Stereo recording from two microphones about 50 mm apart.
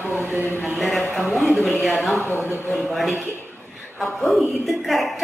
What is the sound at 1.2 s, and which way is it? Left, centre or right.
A woman's voice, centre.